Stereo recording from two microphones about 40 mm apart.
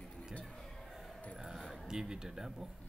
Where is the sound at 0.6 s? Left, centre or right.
Centre.